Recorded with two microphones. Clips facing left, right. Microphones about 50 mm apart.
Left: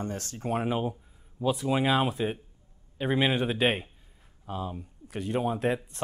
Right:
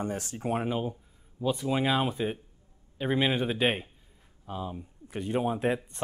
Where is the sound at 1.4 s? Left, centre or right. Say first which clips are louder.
Left 1 dB; centre.